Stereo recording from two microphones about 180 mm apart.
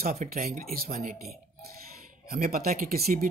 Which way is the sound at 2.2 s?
55° right (ahead or behind).